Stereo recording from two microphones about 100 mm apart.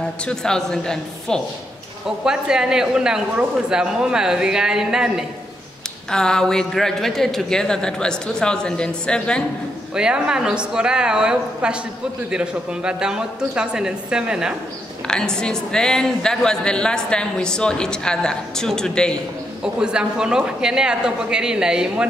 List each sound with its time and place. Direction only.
0.2 s a woman's voice: 5° left (ahead or behind)
2.0 s a man's voice: 5° right (ahead or behind)
6.0 s a woman's voice: 5° left (ahead or behind)
9.9 s a man's voice: 10° right (ahead or behind)
15.0 s a woman's voice: 5° left (ahead or behind)
19.6 s a man's voice: 10° right (ahead or behind)